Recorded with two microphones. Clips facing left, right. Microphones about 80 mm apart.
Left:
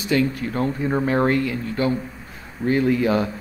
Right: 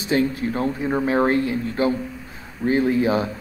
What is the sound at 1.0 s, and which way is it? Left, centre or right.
Speech, centre.